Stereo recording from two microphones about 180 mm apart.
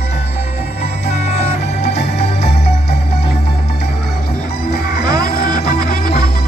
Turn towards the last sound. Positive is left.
turn(degrees=55)  # may be behind; listen again after turning